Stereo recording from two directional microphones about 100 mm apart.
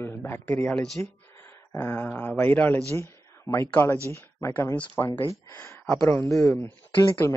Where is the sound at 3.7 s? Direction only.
15° left (ahead or behind).